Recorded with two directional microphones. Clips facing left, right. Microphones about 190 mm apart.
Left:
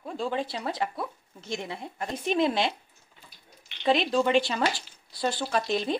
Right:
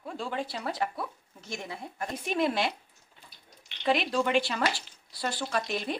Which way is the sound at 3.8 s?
25° left (ahead or behind).